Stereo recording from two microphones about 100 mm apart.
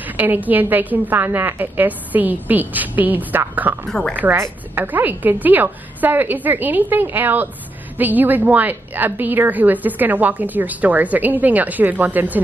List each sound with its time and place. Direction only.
0.0 s a woman's voice: 15° right (ahead or behind)